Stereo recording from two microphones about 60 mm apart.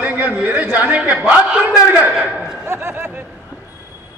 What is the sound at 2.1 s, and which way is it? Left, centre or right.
Speech, centre.